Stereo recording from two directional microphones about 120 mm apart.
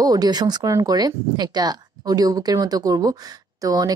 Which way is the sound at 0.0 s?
35° right (ahead or behind).